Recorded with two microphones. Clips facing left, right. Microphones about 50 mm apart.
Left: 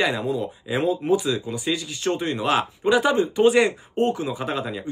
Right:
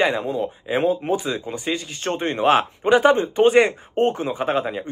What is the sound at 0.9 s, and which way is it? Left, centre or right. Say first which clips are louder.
Speech: left 1 dB; right.